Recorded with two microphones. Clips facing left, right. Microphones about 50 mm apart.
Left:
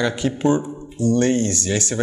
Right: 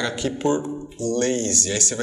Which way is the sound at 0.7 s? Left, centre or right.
Centre.